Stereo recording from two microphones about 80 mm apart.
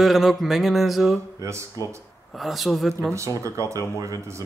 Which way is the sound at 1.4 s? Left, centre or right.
Right.